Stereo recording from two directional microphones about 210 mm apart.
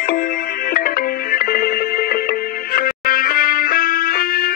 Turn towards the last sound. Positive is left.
turn(degrees=45)  # may be behind; listen again after turning